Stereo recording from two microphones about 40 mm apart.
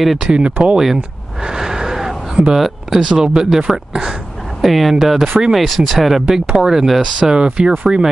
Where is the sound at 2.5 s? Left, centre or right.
Centre.